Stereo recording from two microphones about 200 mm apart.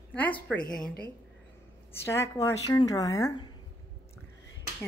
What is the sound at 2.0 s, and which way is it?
A woman's voice, 15° left (ahead or behind).